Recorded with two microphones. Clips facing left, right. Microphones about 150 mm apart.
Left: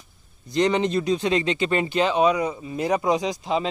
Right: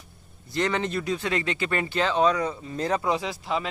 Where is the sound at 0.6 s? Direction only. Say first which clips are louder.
Left 5 dB; 20° left (ahead or behind).